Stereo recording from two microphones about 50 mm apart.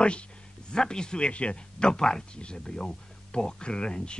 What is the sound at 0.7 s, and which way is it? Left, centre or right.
Speech, centre.